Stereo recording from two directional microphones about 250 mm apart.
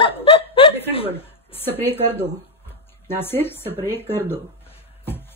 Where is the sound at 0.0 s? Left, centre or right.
Left.